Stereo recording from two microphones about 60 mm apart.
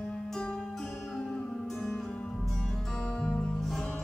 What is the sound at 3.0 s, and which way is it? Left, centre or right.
Music, centre.